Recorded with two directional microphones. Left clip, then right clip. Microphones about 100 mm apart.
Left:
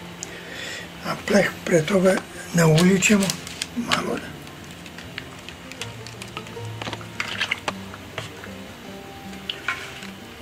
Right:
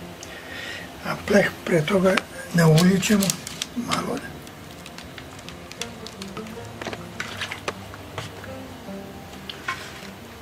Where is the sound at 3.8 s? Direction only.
10° left (ahead or behind).